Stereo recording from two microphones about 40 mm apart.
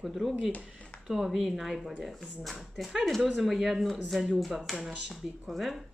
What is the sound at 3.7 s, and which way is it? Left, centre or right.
A woman's voice, centre.